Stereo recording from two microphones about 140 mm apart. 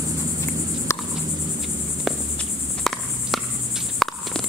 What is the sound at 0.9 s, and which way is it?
Cricket, 20° left (ahead or behind).